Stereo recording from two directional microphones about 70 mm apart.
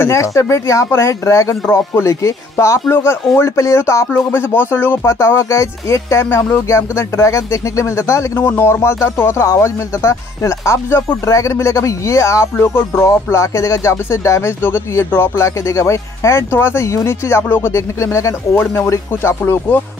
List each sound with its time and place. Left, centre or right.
0.1 s speech: left
3.3 s speech: left
4.1 s speech: left
5.0 s speech: left
8.4 s speech: left
11.3 s speech: left
13.0 s speech: left